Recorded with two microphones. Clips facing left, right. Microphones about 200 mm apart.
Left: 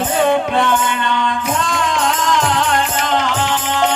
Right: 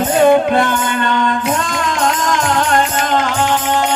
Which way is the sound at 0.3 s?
45° right (ahead or behind).